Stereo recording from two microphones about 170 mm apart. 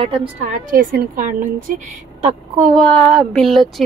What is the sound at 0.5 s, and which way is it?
Speech, 55° right (ahead or behind).